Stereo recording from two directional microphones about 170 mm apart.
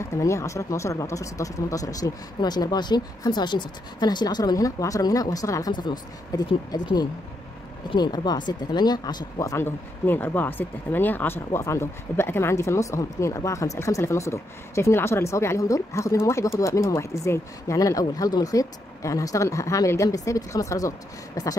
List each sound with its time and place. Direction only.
0.0 s speech: 15° left (ahead or behind)